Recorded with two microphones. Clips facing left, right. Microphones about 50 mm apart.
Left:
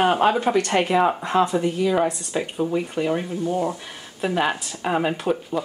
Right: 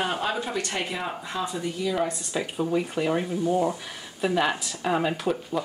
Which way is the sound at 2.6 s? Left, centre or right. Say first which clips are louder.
Left 1 dB; centre.